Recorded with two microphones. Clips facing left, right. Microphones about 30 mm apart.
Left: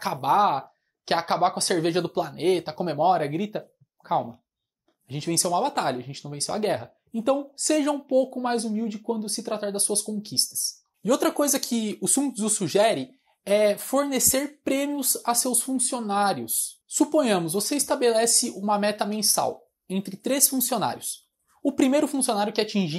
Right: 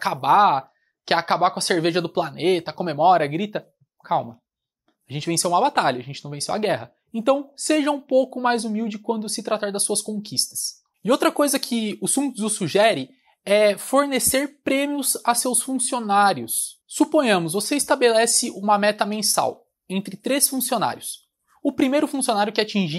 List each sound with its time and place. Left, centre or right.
0.0 s speech: right
3.1 s speech: right
5.0 s speech: right
5.5 s speech: right
5.8 s speech: right
7.2 s speech: right
8.4 s speech: right
13.4 s speech: right
15.2 s speech: right
15.5 s speech: right
16.4 s speech: right
18.4 s speech: right
19.5 s speech: right